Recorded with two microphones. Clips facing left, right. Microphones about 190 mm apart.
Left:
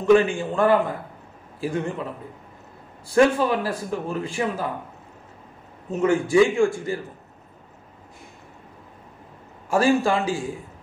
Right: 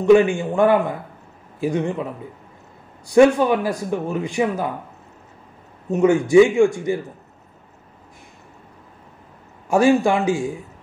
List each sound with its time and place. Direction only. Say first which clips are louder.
0.0 s a man's voice: right 4 dB; 15° right (ahead or behind)
3.1 s a man's voice: right 5 dB; 20° right (ahead or behind)
5.9 s a man's voice: right 5 dB; 15° right (ahead or behind)
9.7 s a man's voice: right 4 dB; 20° right (ahead or behind)